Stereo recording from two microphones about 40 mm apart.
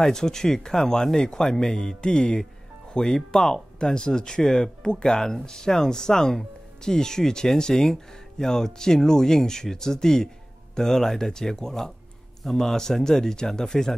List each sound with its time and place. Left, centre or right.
0.0 s speech: centre